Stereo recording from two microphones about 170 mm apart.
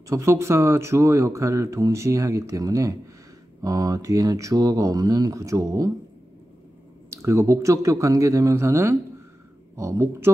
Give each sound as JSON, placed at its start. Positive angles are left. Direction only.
{"t": 0.1, "sound": "speech", "side_deg": -15}
{"t": 7.1, "sound": "speech", "side_deg": -20}